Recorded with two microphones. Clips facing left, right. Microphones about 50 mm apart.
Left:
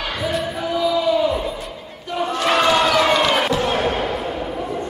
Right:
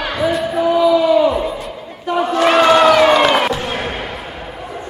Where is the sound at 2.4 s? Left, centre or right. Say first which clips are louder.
Right 6 dB; right.